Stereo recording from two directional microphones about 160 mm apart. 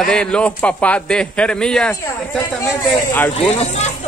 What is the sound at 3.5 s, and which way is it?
Speech, 45° left (ahead or behind).